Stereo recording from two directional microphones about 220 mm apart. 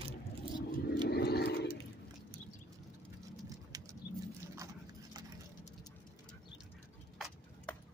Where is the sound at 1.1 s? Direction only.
45° left (ahead or behind).